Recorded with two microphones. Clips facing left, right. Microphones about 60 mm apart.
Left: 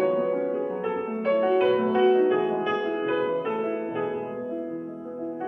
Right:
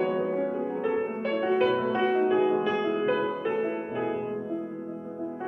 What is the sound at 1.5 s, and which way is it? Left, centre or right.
Music, centre.